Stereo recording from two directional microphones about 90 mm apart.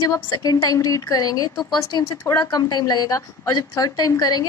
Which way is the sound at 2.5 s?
50° left (ahead or behind).